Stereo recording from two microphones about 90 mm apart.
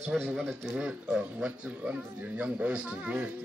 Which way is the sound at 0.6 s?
10° right (ahead or behind).